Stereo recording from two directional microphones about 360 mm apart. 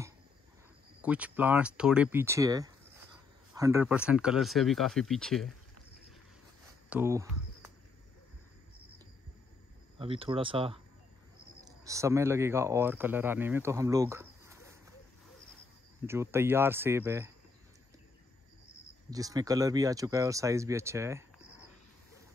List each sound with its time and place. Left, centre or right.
1.0 s speech: centre
6.9 s a sound: centre
9.9 s speech: centre
16.1 s speech: centre
19.0 s speech: centre